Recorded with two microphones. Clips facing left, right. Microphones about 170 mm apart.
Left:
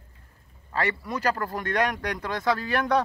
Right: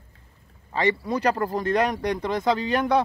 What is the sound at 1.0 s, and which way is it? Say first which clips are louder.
Speech: right 4 dB; 30° right (ahead or behind).